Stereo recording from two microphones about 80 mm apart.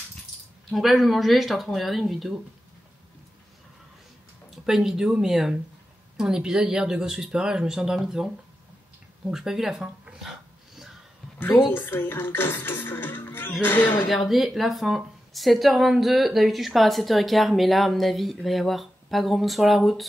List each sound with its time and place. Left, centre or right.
0.7 s speech: centre
4.6 s speech: centre
9.3 s speech: centre
11.3 s a woman's voice: left
14.1 s speech: centre